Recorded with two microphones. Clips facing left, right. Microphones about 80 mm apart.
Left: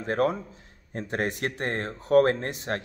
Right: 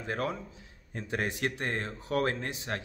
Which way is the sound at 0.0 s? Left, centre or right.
Left.